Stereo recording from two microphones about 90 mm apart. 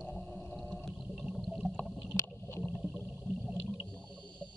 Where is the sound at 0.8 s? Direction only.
Centre (ahead or behind).